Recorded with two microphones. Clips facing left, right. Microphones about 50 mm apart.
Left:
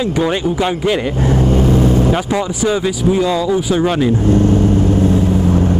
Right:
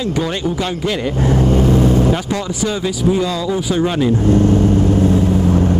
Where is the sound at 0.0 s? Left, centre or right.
Centre.